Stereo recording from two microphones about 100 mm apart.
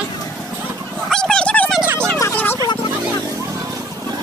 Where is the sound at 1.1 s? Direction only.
5° left (ahead or behind).